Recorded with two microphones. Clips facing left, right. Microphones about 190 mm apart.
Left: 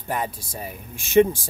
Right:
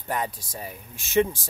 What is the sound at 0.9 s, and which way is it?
Speech, 15° left (ahead or behind).